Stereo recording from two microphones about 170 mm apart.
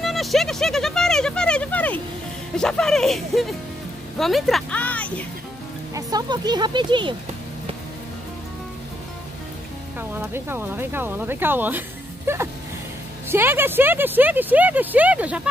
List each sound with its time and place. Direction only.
0.0 s speech: centre (ahead or behind)
5.9 s speech: 20° right (ahead or behind)
9.9 s speech: 10° right (ahead or behind)
13.3 s speech: 15° right (ahead or behind)